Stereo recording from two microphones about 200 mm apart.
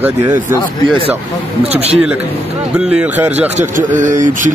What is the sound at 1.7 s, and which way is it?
Speech, 30° right (ahead or behind).